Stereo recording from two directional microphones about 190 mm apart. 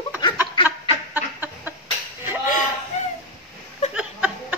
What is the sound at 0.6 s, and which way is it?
Chicken, 10° right (ahead or behind).